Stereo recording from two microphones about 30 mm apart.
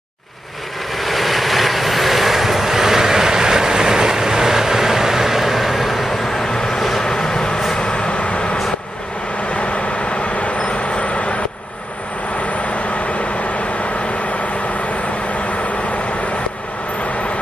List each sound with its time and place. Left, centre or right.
1.0 s vehicle: centre
6.4 s vehicle: centre; by 8.5 s left
10.4 s vehicle: left